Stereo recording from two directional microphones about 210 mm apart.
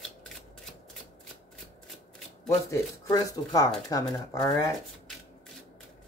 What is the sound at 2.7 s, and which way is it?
Speech, 15° left (ahead or behind).